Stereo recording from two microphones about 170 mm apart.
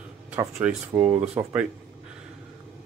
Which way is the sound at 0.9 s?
25° right (ahead or behind).